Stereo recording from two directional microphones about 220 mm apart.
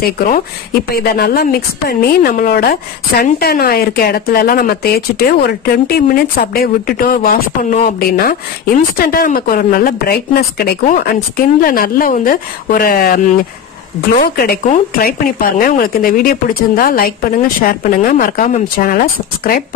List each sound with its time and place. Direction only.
0.0 s a woman's voice: 40° left (ahead or behind)